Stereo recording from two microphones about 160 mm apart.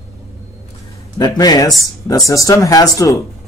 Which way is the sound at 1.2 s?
25° left (ahead or behind).